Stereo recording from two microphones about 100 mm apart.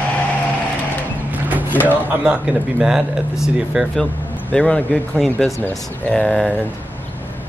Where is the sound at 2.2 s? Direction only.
10° right (ahead or behind).